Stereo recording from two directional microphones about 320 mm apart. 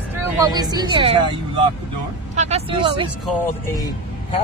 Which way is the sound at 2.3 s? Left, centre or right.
Centre.